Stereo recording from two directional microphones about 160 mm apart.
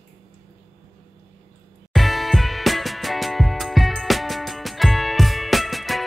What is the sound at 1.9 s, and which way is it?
Music, centre (ahead or behind).